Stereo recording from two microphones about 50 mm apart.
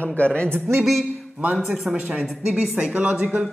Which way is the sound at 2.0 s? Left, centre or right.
Right.